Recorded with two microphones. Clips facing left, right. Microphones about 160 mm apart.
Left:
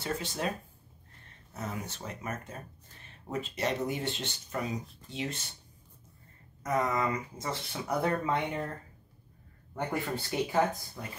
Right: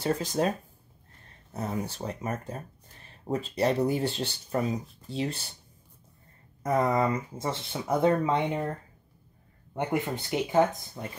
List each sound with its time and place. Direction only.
0.0 s speech: 40° right (ahead or behind)
1.5 s speech: 35° right (ahead or behind)
6.6 s speech: 30° right (ahead or behind)
9.8 s speech: 20° right (ahead or behind)